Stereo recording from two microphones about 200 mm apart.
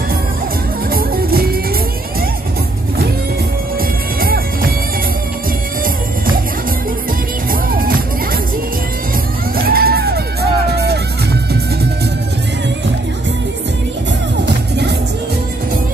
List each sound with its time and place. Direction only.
0.8 s music: 45° right (ahead or behind)
4.2 s music: 45° right (ahead or behind)
7.7 s music: 45° right (ahead or behind)
9.6 s music: 50° right (ahead or behind)
14.4 s music: 60° right (ahead or behind)